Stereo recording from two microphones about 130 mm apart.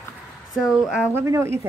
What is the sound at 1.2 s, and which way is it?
Speech, 20° right (ahead or behind).